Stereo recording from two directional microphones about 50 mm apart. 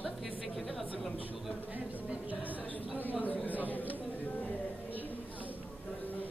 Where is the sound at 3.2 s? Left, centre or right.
Left.